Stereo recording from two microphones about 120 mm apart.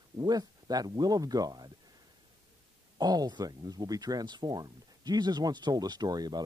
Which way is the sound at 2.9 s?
35° right (ahead or behind).